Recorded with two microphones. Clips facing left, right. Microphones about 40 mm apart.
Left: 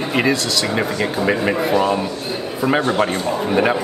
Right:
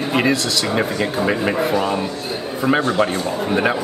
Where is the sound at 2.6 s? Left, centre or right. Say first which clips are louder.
Even; right.